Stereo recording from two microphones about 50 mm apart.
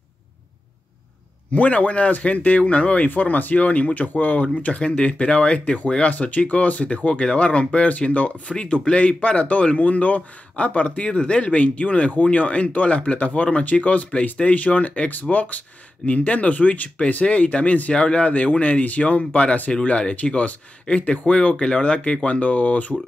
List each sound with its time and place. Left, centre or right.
1.5 s speech: left
3.1 s speech: left